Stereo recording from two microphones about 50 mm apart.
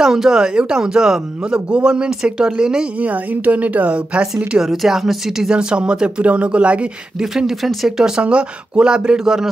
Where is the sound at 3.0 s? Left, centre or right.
Right.